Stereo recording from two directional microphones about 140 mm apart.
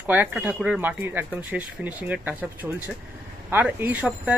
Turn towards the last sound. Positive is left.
turn(degrees=-10)  # may be behind; listen again after turning